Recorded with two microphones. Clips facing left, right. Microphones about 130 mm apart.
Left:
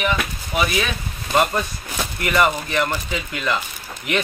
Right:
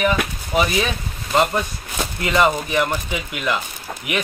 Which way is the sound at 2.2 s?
20° right (ahead or behind).